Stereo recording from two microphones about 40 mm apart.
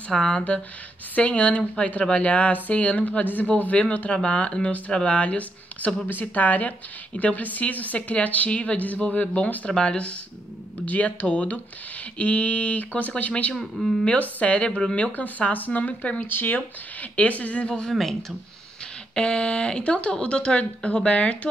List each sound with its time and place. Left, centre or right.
0.1 s speech: centre
1.1 s speech: left
6.0 s speech: left
9.7 s speech: left
10.9 s speech: left
13.6 s speech: centre
14.0 s speech: left
16.2 s speech: left
16.5 s speech: left
17.8 s speech: centre
19.1 s speech: left